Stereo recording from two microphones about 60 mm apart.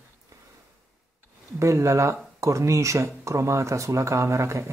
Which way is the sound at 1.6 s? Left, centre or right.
Right.